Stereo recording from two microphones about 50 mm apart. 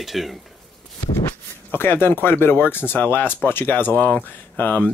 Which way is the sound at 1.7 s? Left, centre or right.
Left.